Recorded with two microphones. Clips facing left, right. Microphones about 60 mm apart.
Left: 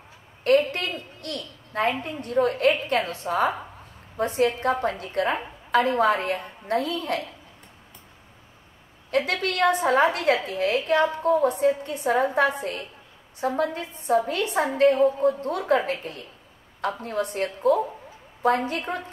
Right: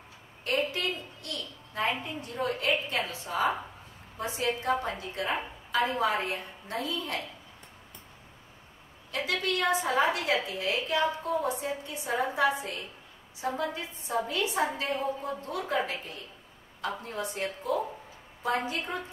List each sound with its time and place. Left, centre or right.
0.4 s a sound: left
3.1 s a woman's voice: left
9.1 s a woman's voice: left